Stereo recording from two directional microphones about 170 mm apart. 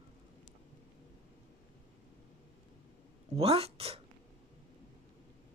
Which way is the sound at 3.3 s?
35° right (ahead or behind).